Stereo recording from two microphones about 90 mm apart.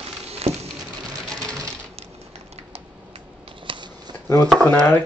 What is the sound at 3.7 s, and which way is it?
Shuffling cards, 75° right (ahead or behind).